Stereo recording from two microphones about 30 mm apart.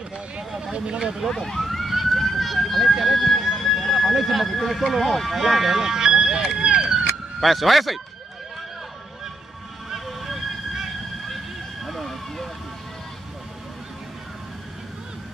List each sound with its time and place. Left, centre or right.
0.6 s speech: right
1.4 s emergency vehicle: centre
3.3 s a sound: centre
3.9 s speech: centre
5.8 s speech: centre
6.7 s police car: centre
7.3 s speech: centre
9.9 s vehicle: centre
11.8 s vehicle: centre